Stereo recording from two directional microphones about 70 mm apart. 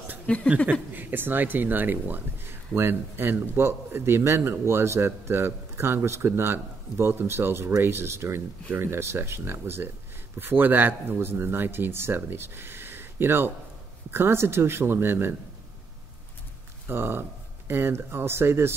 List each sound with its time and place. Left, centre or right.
0.3 s speech: centre
0.7 s speech: right
16.8 s speech: right